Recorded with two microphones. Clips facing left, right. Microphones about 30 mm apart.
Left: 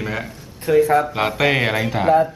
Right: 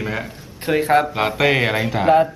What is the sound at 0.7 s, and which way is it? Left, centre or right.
Speech, right.